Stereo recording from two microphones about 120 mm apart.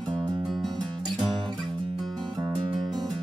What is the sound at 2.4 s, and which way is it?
Music, 30° right (ahead or behind).